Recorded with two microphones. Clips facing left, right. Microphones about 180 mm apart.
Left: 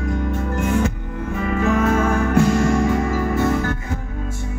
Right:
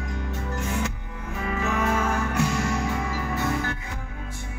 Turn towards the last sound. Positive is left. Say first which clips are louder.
# left 7 dB
turn(degrees=50)  # may be behind; listen again after turning